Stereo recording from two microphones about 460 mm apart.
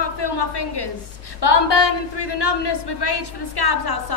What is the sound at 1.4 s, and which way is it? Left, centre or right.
A woman's voice, left.